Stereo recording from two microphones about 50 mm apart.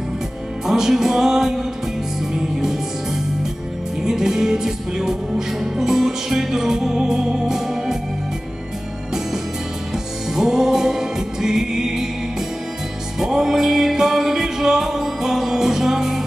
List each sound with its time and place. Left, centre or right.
0.7 s music: centre
4.0 s music: centre
10.3 s music: centre